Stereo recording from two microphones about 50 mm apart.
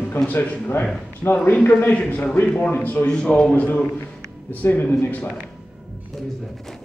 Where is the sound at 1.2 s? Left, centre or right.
Left.